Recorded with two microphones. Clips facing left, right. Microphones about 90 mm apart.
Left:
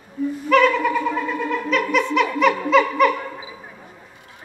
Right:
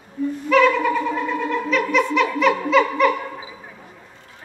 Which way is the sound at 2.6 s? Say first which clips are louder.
Left 1 dB; centre (ahead or behind).